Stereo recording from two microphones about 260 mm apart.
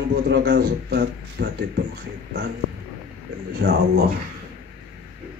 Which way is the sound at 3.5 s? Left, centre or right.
Right.